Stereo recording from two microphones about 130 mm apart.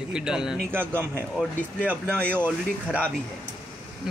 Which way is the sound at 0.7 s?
15° right (ahead or behind).